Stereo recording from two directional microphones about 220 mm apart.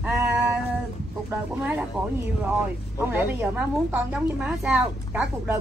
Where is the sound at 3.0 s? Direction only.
10° right (ahead or behind).